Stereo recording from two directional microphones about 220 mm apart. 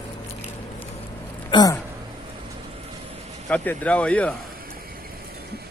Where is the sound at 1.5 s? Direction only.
15° left (ahead or behind).